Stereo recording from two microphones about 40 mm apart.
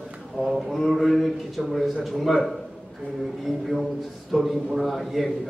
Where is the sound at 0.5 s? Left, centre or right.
Centre.